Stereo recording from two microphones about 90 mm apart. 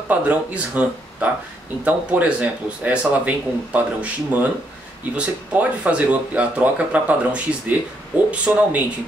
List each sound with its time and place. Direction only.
0.1 s speech: 15° right (ahead or behind)